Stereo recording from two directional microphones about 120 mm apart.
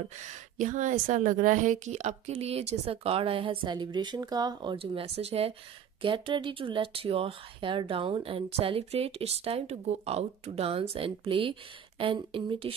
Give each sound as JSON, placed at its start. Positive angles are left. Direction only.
{"t": 0.6, "sound": "a woman's voice", "side_deg": -90}
{"t": 6.0, "sound": "speech", "side_deg": -45}